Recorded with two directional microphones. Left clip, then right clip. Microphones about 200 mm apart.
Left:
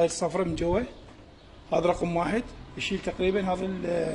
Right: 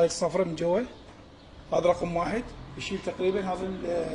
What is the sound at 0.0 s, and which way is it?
A man's voice, 10° left (ahead or behind).